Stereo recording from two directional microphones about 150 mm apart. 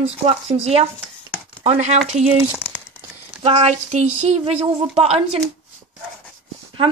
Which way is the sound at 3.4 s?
45° right (ahead or behind).